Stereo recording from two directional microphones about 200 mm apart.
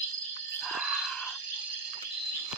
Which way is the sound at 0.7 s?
Centre (ahead or behind).